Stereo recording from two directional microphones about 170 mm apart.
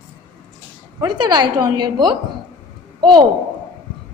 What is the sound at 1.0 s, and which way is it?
A woman's voice, 25° right (ahead or behind).